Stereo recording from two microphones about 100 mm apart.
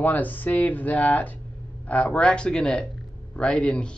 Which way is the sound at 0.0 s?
15° left (ahead or behind).